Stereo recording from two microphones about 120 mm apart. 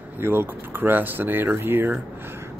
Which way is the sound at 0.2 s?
20° right (ahead or behind).